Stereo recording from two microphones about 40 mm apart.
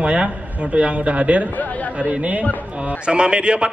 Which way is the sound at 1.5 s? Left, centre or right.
Left.